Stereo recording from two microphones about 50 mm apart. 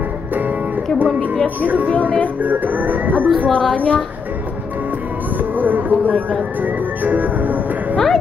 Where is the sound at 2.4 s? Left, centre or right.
Right.